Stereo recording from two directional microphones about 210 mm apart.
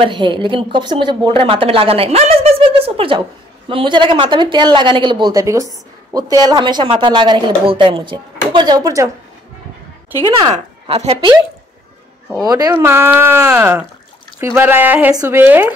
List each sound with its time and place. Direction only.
0.0 s a woman's voice: 25° right (ahead or behind)
10.5 s a woman's voice: 30° right (ahead or behind)
12.4 s speech: 15° right (ahead or behind)